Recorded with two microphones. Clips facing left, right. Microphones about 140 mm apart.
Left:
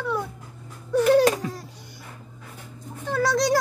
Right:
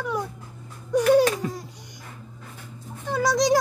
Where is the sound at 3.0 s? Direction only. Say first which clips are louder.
Right 1 dB; 15° right (ahead or behind).